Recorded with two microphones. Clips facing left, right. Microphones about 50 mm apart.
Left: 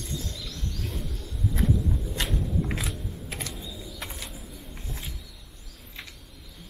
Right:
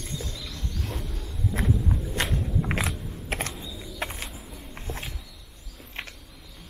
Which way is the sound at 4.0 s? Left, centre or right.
Right.